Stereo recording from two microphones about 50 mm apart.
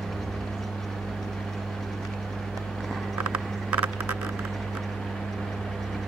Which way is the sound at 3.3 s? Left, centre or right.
Right.